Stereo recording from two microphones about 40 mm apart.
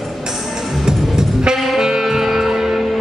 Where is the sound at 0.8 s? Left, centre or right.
Centre.